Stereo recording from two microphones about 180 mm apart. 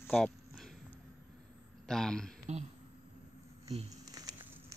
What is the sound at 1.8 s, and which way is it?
Speech, 5° left (ahead or behind).